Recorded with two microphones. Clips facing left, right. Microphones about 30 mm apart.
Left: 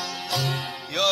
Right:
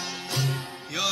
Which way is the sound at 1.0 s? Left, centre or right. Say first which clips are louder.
Left 5 dB; left.